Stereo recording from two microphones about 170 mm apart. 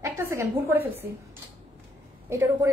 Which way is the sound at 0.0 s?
15° right (ahead or behind).